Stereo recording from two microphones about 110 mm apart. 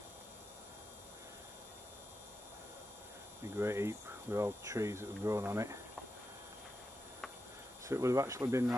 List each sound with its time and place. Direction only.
3.5 s speech: 25° right (ahead or behind)
7.8 s speech: 25° right (ahead or behind)